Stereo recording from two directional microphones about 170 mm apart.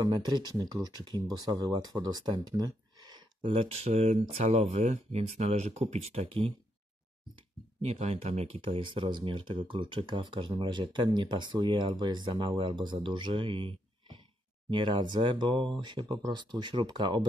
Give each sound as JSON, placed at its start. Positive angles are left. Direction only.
{"t": 0.2, "sound": "speech", "side_deg": -25}
{"t": 3.8, "sound": "speech", "side_deg": -40}
{"t": 7.8, "sound": "speech", "side_deg": -40}